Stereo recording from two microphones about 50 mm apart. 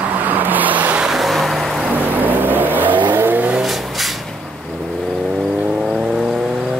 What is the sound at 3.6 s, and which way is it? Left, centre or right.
Vehicle, centre.